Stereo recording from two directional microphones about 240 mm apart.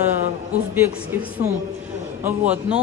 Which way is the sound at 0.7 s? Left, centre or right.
Centre.